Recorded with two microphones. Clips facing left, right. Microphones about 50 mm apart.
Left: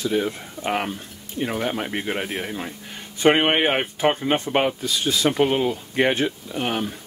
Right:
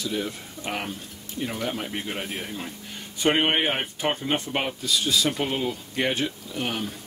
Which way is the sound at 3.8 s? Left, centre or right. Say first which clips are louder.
Left 6 dB; centre.